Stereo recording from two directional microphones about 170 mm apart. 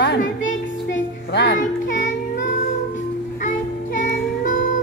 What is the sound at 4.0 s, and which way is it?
Music, 50° left (ahead or behind).